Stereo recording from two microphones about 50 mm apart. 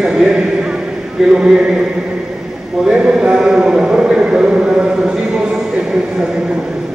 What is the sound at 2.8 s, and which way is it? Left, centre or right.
A man's voice, centre.